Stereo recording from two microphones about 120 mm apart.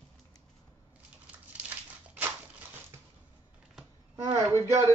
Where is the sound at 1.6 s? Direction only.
15° right (ahead or behind).